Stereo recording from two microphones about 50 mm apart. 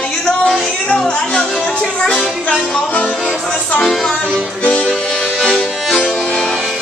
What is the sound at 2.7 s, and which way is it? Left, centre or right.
Music, left.